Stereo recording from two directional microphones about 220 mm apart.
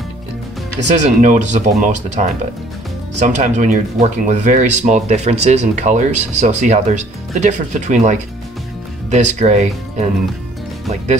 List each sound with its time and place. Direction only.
0.8 s speech: 35° right (ahead or behind)